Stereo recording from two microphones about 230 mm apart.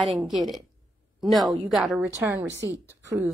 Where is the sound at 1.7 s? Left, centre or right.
Centre.